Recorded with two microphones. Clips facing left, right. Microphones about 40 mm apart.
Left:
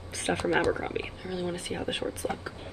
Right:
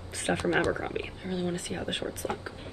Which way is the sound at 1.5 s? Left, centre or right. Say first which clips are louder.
Left 1 dB; left.